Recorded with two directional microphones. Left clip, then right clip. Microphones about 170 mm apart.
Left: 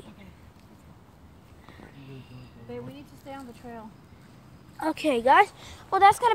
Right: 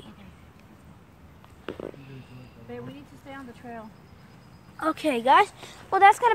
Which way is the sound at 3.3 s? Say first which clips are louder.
Right 1 dB; 55° left (ahead or behind).